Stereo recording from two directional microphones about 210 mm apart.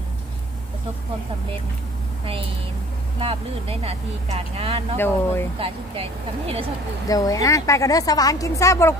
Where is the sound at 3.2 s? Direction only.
25° right (ahead or behind).